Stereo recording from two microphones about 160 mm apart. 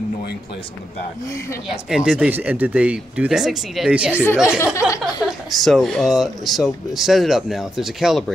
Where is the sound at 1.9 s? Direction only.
5° right (ahead or behind).